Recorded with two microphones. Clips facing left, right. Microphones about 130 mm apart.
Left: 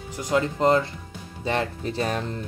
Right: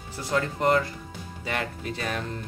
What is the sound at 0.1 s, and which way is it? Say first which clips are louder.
Speech: left 4 dB; 15° left (ahead or behind).